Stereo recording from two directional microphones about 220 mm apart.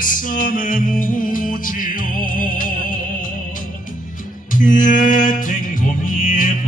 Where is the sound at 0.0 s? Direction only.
40° left (ahead or behind).